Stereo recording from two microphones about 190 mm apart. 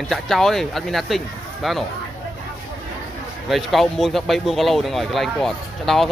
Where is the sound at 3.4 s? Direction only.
Centre (ahead or behind).